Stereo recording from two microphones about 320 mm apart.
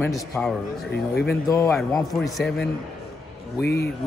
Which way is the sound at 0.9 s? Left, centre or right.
Left.